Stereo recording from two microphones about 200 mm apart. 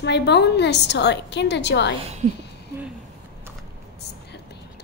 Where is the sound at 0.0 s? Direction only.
60° left (ahead or behind).